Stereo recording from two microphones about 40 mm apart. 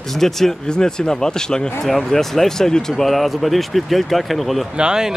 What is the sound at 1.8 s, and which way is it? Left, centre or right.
Speech, centre.